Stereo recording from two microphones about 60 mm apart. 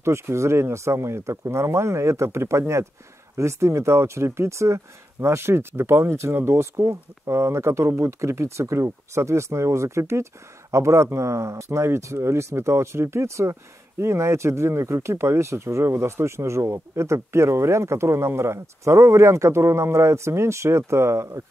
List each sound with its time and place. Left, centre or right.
0.0 s speech: right